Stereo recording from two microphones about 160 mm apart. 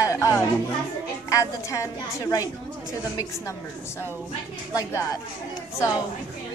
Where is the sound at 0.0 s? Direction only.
20° left (ahead or behind).